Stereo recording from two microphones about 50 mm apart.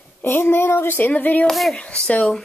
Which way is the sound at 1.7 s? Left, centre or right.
Left.